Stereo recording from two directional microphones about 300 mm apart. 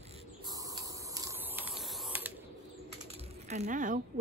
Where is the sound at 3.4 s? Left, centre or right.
Right.